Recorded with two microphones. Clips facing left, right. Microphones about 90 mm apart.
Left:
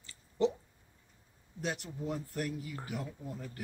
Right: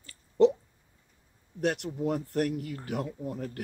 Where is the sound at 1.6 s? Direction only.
65° right (ahead or behind).